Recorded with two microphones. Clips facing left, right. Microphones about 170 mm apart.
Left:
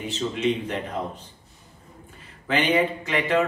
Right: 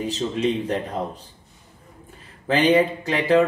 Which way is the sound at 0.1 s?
35° right (ahead or behind).